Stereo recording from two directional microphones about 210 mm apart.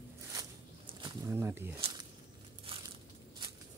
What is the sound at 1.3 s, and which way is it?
Speech, 10° right (ahead or behind).